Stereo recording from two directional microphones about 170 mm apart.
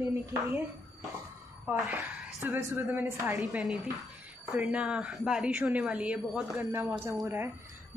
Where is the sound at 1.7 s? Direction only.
5° right (ahead or behind).